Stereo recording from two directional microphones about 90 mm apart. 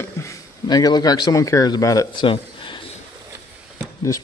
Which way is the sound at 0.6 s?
50° left (ahead or behind).